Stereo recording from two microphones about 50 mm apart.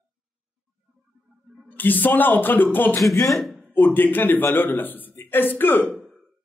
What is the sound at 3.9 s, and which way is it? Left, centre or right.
Speech, left.